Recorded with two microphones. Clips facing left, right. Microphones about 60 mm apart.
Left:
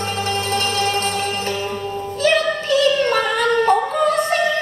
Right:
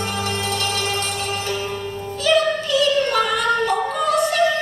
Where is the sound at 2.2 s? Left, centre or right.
Left.